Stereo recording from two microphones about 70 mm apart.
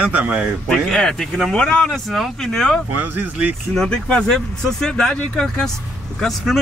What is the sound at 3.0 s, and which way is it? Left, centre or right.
Speech, right.